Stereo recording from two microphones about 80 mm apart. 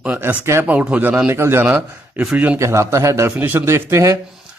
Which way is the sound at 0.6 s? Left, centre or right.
Centre.